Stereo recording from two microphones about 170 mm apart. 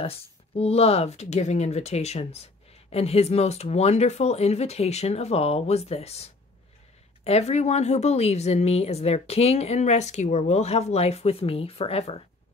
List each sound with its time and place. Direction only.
0.0 s speech: 35° left (ahead or behind)